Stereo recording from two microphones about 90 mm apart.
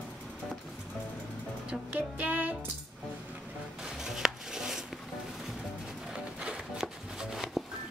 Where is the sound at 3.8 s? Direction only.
5° right (ahead or behind).